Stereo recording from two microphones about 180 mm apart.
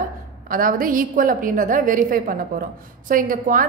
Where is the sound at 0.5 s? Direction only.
50° right (ahead or behind).